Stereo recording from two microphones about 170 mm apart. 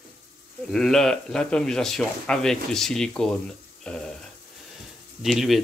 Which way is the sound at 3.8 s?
5° left (ahead or behind).